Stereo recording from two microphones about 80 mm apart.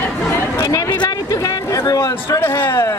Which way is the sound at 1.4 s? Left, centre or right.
Left.